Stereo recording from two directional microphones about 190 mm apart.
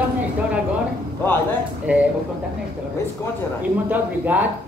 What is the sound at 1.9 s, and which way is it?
Speech, 10° right (ahead or behind).